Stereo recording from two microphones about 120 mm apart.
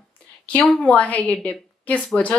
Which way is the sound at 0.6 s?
10° left (ahead or behind).